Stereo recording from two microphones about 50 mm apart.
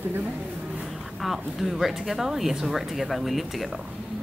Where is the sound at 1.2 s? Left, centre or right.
Centre.